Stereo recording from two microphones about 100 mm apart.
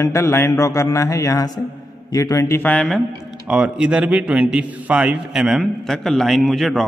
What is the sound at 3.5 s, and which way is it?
A man's voice, 10° right (ahead or behind).